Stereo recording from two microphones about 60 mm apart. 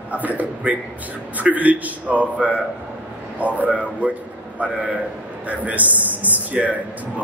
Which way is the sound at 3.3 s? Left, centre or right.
Right.